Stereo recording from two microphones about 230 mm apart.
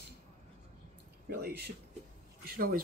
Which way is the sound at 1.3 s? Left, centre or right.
Right.